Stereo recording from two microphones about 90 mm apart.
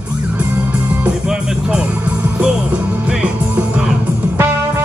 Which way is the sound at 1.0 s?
10° right (ahead or behind).